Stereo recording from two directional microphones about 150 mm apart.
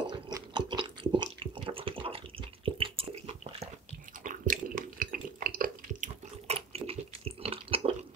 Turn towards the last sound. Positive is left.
turn(degrees=-40)  # may be behind; listen again after turning